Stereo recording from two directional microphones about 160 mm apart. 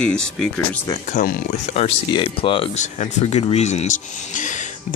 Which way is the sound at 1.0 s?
55° left (ahead or behind).